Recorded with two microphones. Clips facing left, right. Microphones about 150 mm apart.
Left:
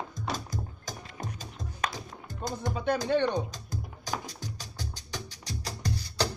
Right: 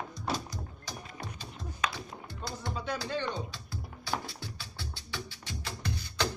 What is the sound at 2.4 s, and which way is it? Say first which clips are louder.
Speech: left 7 dB; 50° left (ahead or behind).